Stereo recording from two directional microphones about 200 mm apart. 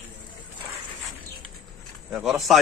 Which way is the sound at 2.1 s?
Centre (ahead or behind).